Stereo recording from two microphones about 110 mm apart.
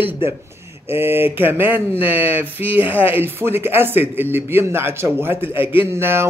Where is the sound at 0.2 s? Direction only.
20° right (ahead or behind).